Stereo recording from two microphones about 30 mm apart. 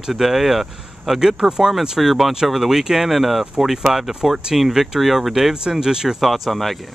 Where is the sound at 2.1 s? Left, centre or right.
Centre.